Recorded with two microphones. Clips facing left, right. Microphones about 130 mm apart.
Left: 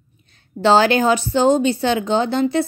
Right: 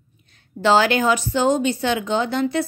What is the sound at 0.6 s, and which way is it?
Speech, 30° left (ahead or behind).